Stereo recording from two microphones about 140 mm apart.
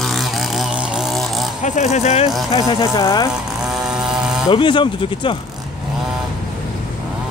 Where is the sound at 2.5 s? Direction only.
30° left (ahead or behind).